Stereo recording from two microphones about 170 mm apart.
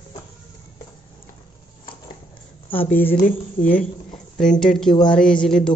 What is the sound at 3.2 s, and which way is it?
Speech, 55° left (ahead or behind).